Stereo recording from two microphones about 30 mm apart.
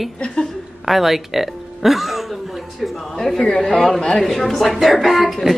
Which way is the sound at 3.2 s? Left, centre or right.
Centre.